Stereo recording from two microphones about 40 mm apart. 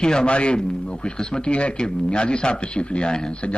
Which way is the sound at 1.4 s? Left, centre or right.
Left.